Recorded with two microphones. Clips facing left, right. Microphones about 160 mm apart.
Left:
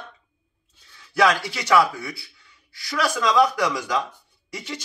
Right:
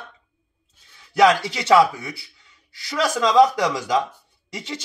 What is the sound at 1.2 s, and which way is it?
A man's voice, 20° right (ahead or behind).